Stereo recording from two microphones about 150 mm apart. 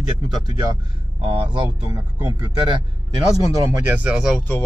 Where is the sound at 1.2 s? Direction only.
35° right (ahead or behind); by 4.3 s 5° right (ahead or behind).